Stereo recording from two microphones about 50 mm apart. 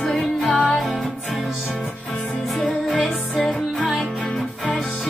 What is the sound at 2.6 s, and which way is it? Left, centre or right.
Music, left.